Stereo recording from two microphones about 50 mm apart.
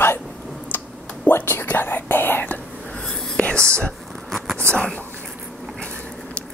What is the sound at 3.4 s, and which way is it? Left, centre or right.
Whispering, left.